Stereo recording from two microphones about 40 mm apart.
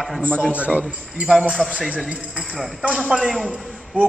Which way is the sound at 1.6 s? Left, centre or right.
Centre.